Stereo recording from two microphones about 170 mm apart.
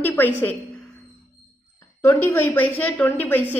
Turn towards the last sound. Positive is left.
turn(degrees=10)  # may be behind; listen again after turning